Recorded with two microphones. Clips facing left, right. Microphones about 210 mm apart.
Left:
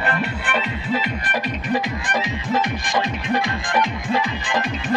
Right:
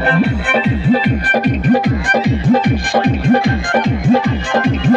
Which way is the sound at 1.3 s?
55° right (ahead or behind).